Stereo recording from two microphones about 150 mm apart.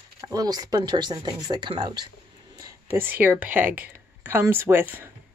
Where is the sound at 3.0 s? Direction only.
15° right (ahead or behind).